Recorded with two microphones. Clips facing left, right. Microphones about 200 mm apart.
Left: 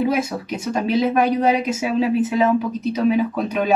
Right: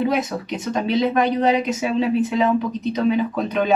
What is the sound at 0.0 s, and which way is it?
Speech, 5° left (ahead or behind).